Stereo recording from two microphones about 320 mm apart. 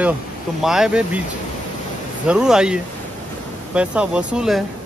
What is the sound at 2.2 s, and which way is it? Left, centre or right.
Speech, centre.